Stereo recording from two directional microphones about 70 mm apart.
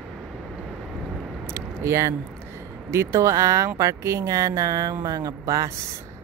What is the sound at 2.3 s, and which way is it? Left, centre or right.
Speech, right.